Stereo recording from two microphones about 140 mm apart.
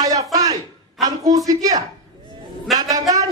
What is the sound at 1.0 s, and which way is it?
Speech, 25° right (ahead or behind).